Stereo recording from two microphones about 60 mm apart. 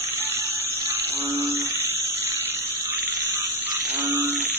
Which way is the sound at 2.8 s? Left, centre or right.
Right.